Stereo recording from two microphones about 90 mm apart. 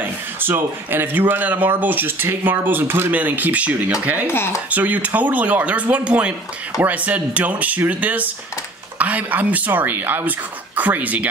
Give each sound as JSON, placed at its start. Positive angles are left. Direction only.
{"t": 0.0, "sound": "speech", "side_deg": -25}
{"t": 4.3, "sound": "speech", "side_deg": 25}
{"t": 4.6, "sound": "speech", "side_deg": -15}